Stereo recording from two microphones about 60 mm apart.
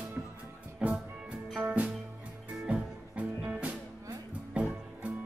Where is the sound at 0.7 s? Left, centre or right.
Centre.